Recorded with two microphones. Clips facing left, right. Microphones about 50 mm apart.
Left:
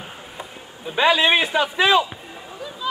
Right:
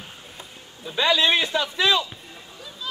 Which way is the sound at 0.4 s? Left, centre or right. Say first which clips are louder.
Left 5 dB; left.